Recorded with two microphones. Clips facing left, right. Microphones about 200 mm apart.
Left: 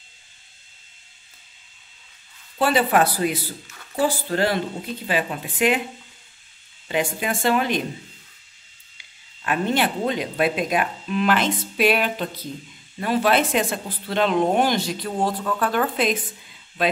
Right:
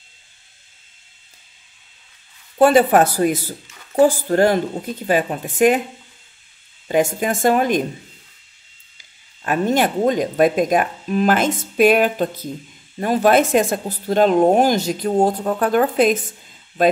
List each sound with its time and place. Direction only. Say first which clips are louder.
2.6 s speech: right 6 dB; 45° right (ahead or behind)
6.9 s speech: right 6 dB; 45° right (ahead or behind)
8.9 s speech: left 1 dB; 40° right (ahead or behind)